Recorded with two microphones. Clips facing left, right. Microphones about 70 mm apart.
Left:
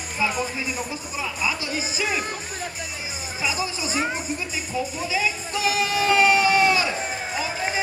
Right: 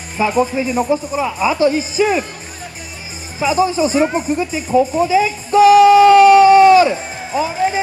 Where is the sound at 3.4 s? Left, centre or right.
Right.